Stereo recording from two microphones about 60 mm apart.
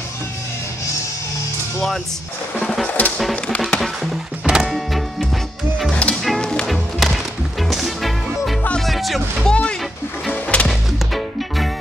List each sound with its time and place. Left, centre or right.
2.6 s music: centre
5.9 s music: left
6.2 s music: centre
6.7 s music: centre
9.5 s music: centre
10.7 s music: centre